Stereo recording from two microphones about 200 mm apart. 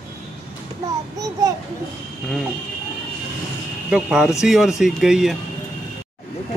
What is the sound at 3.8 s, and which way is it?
Speech, 5° right (ahead or behind).